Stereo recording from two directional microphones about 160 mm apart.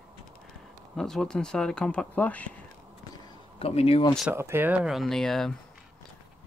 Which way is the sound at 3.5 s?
40° left (ahead or behind).